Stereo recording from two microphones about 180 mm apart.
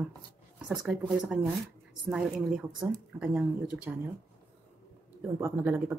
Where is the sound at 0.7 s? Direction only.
Centre (ahead or behind).